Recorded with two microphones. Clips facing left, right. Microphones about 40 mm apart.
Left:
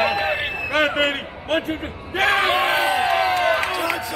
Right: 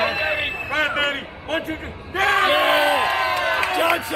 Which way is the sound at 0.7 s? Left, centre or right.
Centre.